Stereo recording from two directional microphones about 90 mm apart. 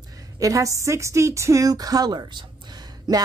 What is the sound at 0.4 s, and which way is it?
Speech, 40° right (ahead or behind).